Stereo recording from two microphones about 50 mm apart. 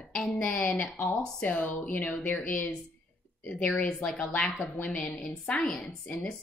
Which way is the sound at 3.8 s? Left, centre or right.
Left.